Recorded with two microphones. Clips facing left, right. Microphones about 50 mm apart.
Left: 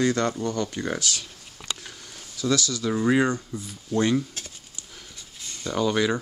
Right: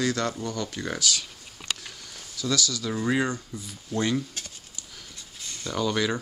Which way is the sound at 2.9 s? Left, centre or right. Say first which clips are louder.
Left 5 dB; centre.